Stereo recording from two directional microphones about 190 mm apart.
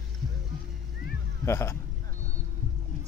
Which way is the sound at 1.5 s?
15° left (ahead or behind).